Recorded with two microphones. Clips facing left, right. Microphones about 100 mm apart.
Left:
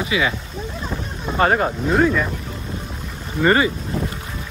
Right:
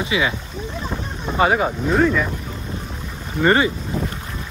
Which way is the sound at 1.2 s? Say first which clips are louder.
Even; 5° right (ahead or behind).